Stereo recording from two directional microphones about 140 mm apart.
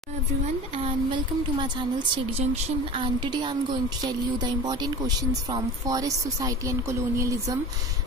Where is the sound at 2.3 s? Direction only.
50° right (ahead or behind).